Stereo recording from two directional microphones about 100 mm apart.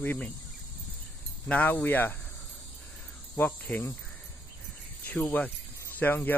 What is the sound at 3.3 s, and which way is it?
Cricket, 15° left (ahead or behind).